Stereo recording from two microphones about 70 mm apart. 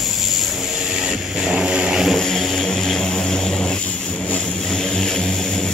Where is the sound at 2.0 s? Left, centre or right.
Centre.